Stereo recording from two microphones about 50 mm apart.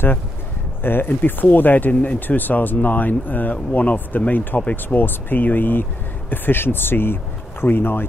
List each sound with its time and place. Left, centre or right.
0.8 s speech: left